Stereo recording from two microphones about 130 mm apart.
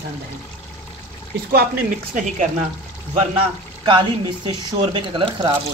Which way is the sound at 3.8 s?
35° right (ahead or behind).